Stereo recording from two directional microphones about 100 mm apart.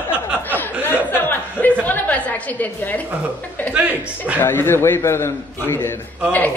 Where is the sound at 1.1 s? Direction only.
20° left (ahead or behind).